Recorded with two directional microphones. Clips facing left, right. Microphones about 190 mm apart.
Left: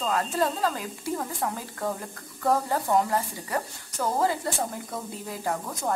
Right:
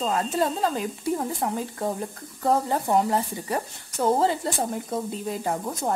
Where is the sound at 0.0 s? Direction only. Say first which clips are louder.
Right 2 dB; 20° right (ahead or behind).